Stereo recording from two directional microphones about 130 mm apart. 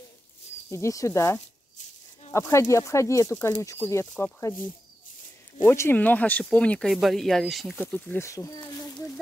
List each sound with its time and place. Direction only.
0.7 s speech: 20° left (ahead or behind)
5.7 s speech: 15° left (ahead or behind); by 7.8 s centre (ahead or behind)
7.8 s speech: 15° left (ahead or behind)
8.3 s a sound: 25° left (ahead or behind)